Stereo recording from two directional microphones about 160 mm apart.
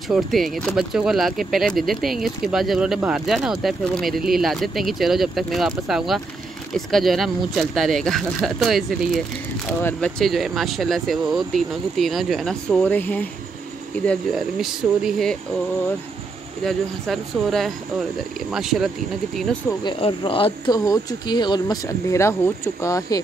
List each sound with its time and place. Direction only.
0.1 s speech: centre (ahead or behind)
9.8 s speech: 10° left (ahead or behind)
14.0 s speech: centre (ahead or behind)
16.6 s speech: centre (ahead or behind)
19.8 s speech: 35° left (ahead or behind)